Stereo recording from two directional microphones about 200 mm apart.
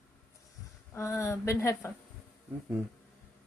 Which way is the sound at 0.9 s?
15° left (ahead or behind).